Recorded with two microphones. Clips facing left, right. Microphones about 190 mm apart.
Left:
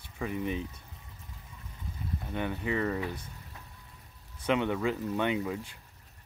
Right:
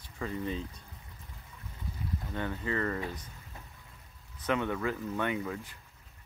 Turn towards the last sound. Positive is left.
turn(degrees=20)  # may be behind; listen again after turning